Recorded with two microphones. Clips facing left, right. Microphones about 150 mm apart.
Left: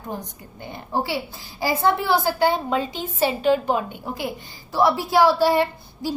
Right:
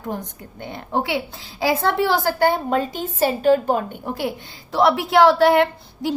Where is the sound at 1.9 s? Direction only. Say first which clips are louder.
Left 2 dB; 65° right (ahead or behind).